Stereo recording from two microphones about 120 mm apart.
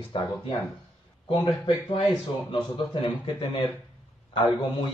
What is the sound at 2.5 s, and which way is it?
Speech, 50° left (ahead or behind).